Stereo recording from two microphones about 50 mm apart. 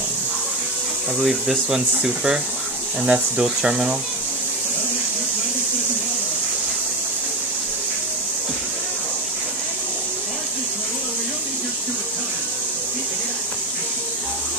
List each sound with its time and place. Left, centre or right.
1.2 s speech: centre